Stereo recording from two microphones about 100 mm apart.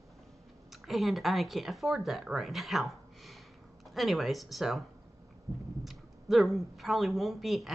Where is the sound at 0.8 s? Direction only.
Centre (ahead or behind).